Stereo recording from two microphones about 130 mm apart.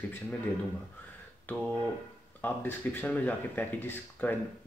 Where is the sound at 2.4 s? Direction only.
15° left (ahead or behind).